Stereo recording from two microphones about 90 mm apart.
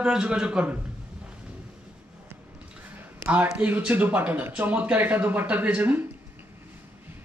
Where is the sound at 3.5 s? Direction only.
15° right (ahead or behind).